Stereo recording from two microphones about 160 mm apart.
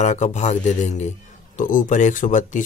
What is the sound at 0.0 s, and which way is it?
Speech, 50° left (ahead or behind).